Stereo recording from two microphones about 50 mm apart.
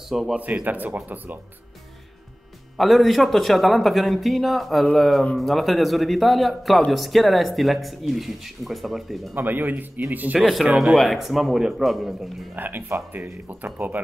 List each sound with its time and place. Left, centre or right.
0.1 s speech: centre
0.7 s speech: right
2.8 s speech: centre
9.3 s speech: right
10.4 s speech: centre
12.5 s speech: right